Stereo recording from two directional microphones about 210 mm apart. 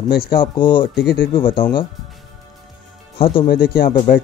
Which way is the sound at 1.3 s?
25° left (ahead or behind).